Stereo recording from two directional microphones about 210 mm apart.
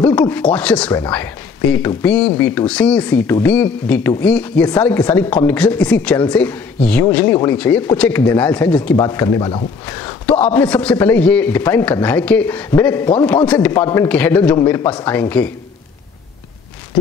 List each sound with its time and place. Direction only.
0.0 s a man's voice: 10° left (ahead or behind)
10.3 s speech: 5° left (ahead or behind)